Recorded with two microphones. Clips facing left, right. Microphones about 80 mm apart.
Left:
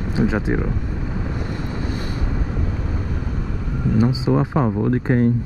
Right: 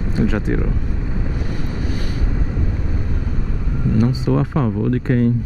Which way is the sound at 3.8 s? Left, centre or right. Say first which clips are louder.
Even; centre.